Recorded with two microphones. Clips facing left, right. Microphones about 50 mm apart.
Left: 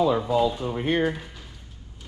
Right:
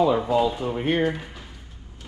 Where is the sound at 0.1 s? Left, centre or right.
Right.